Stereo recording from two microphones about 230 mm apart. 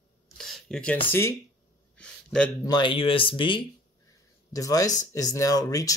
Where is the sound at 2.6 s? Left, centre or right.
Centre.